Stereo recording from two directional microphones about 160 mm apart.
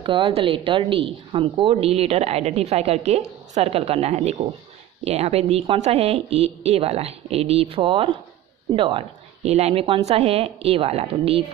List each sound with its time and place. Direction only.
0.0 s speech: 30° right (ahead or behind)